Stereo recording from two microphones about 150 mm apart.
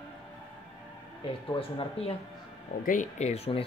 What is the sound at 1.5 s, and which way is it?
Speech, 35° left (ahead or behind).